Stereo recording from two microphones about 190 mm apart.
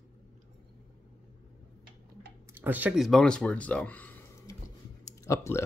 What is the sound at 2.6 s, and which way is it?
Speech, 10° right (ahead or behind).